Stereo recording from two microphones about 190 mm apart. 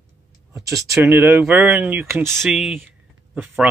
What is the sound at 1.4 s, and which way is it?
Speech, 10° right (ahead or behind).